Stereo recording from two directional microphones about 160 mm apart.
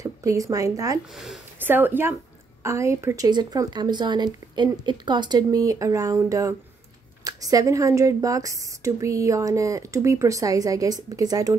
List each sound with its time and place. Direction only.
0.0 s speech: 20° right (ahead or behind)
1.1 s speech: centre (ahead or behind)
1.6 s a woman's voice: 10° right (ahead or behind)